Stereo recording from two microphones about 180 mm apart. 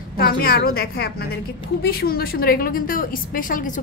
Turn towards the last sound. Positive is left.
turn(degrees=50)  # may be behind; listen again after turning